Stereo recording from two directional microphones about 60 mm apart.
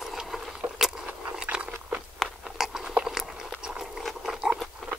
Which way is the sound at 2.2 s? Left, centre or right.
Centre.